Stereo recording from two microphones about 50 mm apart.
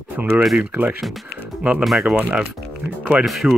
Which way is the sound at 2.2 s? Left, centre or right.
Right.